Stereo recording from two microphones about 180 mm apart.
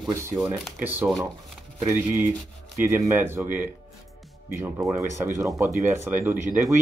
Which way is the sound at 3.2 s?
10° right (ahead or behind).